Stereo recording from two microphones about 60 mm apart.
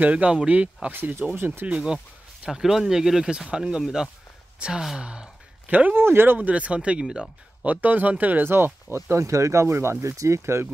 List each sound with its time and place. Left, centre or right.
0.0 s speech: right
1.3 s speech: right
1.7 s speech: centre
5.7 s speech: right
5.9 s speech: right
9.1 s speech: right